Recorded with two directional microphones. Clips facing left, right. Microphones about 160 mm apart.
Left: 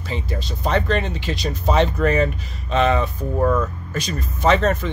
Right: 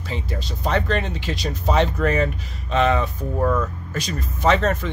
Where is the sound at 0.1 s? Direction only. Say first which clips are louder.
Left 2 dB; 25° left (ahead or behind).